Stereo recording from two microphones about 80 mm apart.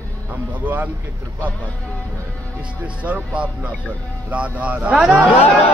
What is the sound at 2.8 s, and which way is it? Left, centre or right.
A man's voice, centre.